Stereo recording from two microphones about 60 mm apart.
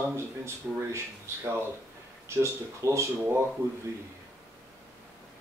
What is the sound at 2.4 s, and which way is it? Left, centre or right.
Speech, right.